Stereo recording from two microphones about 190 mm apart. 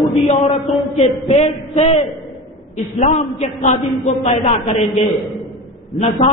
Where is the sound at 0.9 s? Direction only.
35° left (ahead or behind).